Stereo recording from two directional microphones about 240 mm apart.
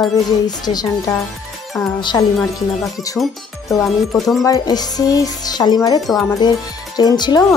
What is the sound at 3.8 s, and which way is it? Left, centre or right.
Speech, centre.